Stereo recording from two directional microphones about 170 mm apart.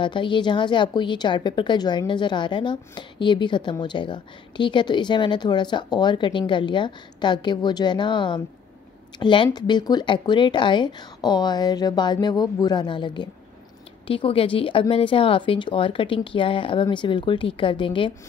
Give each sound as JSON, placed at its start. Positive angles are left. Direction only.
{"t": 0.0, "sound": "a woman's voice", "side_deg": 30}